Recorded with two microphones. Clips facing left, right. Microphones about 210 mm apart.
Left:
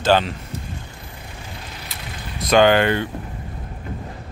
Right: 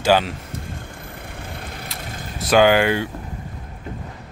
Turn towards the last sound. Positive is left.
turn(degrees=-10)  # may be behind; listen again after turning